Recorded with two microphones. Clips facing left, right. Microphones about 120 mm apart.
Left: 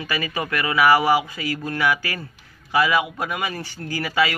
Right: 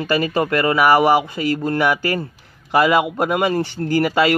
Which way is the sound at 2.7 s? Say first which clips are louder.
Right 5 dB; 50° right (ahead or behind).